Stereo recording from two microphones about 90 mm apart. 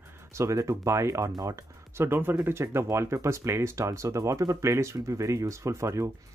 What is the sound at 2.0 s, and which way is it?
Speech, 25° right (ahead or behind).